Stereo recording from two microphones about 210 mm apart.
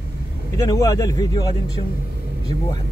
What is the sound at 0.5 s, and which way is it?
Speech, 15° left (ahead or behind).